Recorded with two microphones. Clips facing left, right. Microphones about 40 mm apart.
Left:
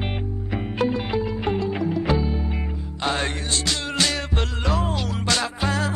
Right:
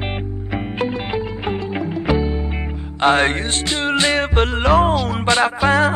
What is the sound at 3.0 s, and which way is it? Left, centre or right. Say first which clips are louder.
Music: right 10 dB; right.